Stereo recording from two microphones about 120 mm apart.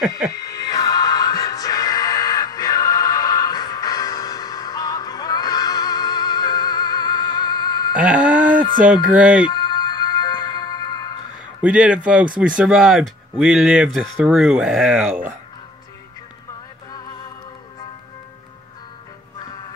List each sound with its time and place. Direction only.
0.3 s music: 30° left (ahead or behind)
7.9 s a sound: 10° right (ahead or behind)
8.8 s speech: 10° right (ahead or behind)
9.5 s music: 35° left (ahead or behind)
11.6 s speech: 10° right (ahead or behind)